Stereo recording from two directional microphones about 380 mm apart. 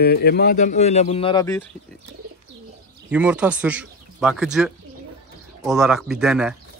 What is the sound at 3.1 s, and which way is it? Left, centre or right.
Speech, centre.